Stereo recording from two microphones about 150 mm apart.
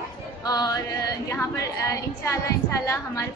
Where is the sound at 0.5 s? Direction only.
25° left (ahead or behind).